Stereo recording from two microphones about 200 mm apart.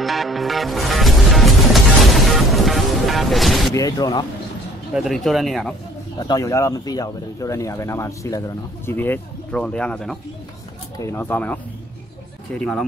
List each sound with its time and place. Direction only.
0.0 s music: centre (ahead or behind)
3.7 s speech: 20° left (ahead or behind)
4.9 s speech: centre (ahead or behind)
6.1 s speech: 20° left (ahead or behind); by 12.8 s 5° left (ahead or behind)